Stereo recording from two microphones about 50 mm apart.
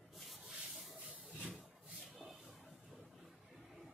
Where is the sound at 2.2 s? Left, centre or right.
Centre.